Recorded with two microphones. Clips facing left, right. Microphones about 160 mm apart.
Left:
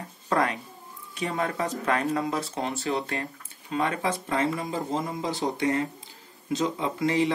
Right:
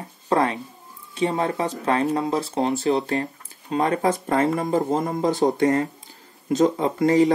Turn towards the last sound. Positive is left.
turn(degrees=-45)  # may be behind; listen again after turning